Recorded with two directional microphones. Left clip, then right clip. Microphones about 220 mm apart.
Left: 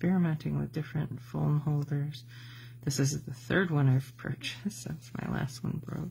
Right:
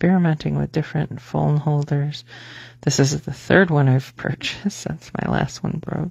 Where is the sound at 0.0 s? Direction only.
40° right (ahead or behind).